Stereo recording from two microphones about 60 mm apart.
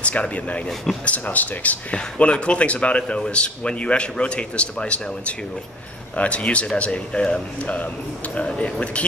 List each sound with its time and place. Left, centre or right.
0.0 s speech: left